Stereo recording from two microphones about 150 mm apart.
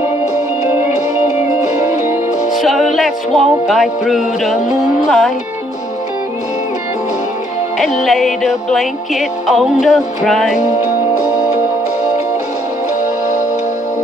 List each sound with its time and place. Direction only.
1.5 s music: 20° right (ahead or behind)
2.5 s music: centre (ahead or behind)
7.8 s music: centre (ahead or behind)